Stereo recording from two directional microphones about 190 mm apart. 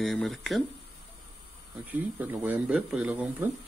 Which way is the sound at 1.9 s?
10° right (ahead or behind).